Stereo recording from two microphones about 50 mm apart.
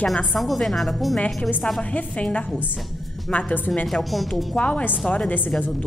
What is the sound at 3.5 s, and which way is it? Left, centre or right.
Speech, left.